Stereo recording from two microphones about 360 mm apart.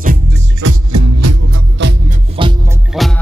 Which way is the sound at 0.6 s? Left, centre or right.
Right.